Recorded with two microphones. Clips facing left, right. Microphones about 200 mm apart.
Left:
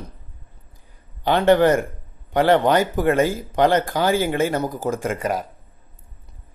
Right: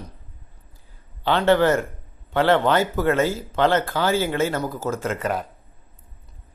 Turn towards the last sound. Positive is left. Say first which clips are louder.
# left 2 dB
turn(degrees=10)  # may be behind; listen again after turning